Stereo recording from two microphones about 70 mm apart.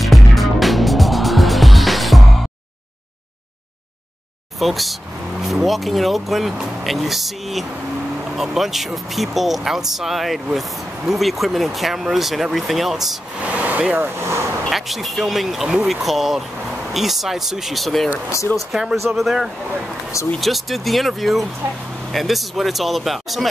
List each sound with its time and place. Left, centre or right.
0.0 s music: centre
4.6 s speech: centre
13.5 s speech: right
14.7 s speech: centre